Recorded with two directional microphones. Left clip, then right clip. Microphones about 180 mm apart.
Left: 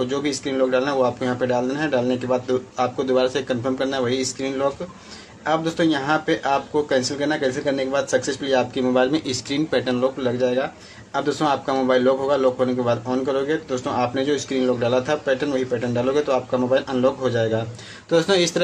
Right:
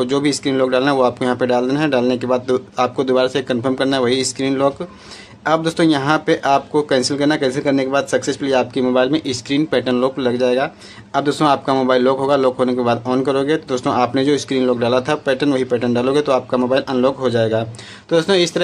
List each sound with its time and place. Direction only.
0.0 s a man's voice: 40° right (ahead or behind)